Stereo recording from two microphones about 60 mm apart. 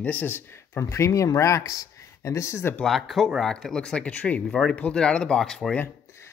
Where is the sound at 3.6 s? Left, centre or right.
Centre.